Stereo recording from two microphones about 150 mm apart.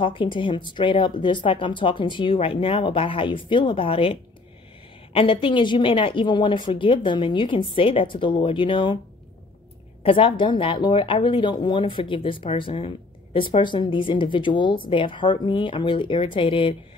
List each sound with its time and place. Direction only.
0.0 s a woman's voice: 35° left (ahead or behind)
10.0 s a woman's voice: 35° left (ahead or behind)